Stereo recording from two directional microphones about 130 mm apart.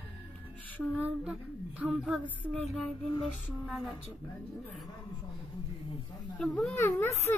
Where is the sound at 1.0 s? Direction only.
10° right (ahead or behind).